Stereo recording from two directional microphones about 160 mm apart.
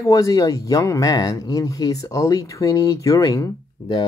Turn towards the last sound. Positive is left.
turn(degrees=25)  # may be behind; listen again after turning